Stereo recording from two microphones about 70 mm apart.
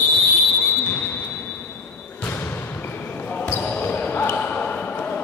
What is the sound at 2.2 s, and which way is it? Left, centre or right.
Basketball bounce, left.